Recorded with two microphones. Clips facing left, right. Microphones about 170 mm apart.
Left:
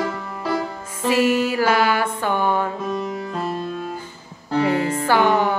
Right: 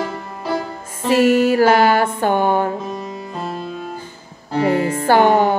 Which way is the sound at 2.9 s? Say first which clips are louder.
Left 2 dB; 20° right (ahead or behind).